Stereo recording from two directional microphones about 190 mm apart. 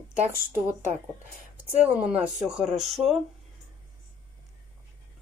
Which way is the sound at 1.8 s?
5° right (ahead or behind).